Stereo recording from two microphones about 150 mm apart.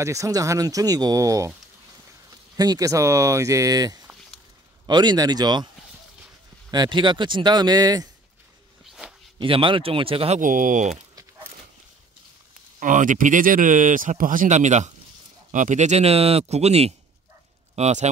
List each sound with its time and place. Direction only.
0.0 s speech: 20° right (ahead or behind)
6.7 s speech: 30° right (ahead or behind)
8.8 s a sound: centre (ahead or behind)
9.4 s speech: 35° right (ahead or behind)
10.4 s speech: 60° right (ahead or behind)
12.8 s speech: 60° right (ahead or behind)